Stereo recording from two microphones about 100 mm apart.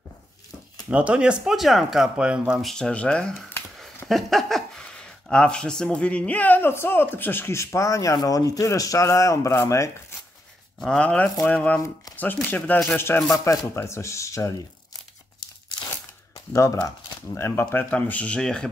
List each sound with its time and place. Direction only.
0.8 s speech: 10° right (ahead or behind)
2.6 s speech: 5° left (ahead or behind); by 9.8 s 30° left (ahead or behind)
10.8 s speech: 5° left (ahead or behind); by 14.5 s 30° left (ahead or behind)
17.3 s speech: 25° left (ahead or behind); by 18.7 s 10° left (ahead or behind)